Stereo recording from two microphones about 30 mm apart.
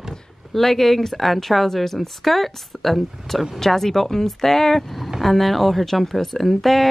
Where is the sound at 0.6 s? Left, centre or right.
Centre.